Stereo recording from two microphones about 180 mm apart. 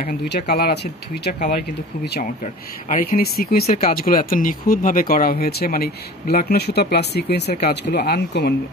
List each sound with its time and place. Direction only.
0.0 s speech: 60° left (ahead or behind)
2.4 s speech: 50° left (ahead or behind)